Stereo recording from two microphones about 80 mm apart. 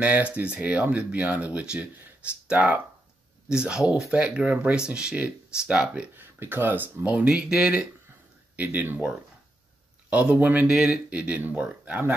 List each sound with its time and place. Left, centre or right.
0.0 s speech: centre
6.1 s speech: right; by 7.9 s centre
8.5 s speech: right
10.7 s speech: centre
11.1 s speech: centre